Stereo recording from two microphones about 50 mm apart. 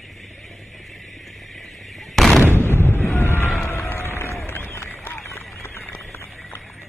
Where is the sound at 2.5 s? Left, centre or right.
Left.